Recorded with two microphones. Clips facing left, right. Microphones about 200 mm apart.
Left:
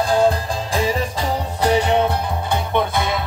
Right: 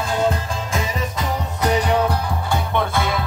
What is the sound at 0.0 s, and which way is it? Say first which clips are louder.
Music: left 4 dB; 35° left (ahead or behind).